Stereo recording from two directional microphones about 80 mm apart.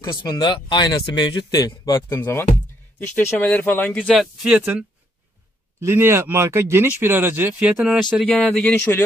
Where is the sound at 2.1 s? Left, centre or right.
Left.